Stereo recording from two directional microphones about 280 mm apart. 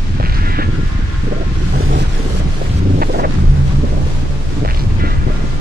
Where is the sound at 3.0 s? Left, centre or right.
Right.